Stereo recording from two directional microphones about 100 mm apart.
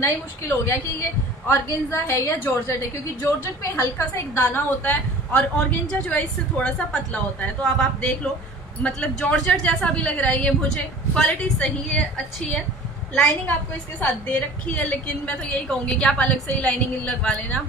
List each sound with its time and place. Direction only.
0.0 s a woman's voice: 25° left (ahead or behind); by 12.0 s 10° left (ahead or behind)
13.5 s a woman's voice: 15° left (ahead or behind)